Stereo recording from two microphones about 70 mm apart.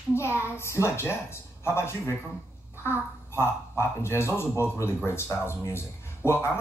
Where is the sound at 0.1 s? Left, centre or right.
Left.